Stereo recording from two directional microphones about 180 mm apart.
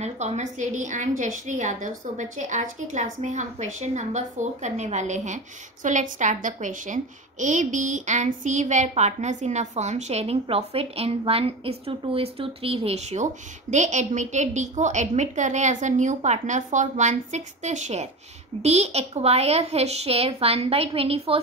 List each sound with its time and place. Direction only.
0.0 s a woman's voice: 40° right (ahead or behind)